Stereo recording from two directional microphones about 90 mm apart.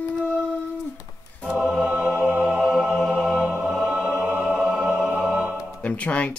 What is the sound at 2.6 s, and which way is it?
Music, 5° right (ahead or behind).